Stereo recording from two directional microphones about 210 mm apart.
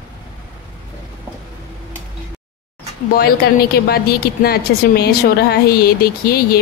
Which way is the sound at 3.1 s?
50° left (ahead or behind).